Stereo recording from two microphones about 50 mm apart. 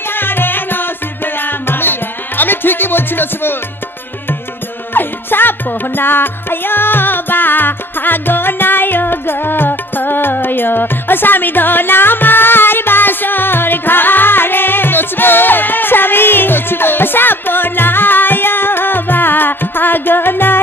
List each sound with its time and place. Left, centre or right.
0.1 s music: left
4.9 s music: left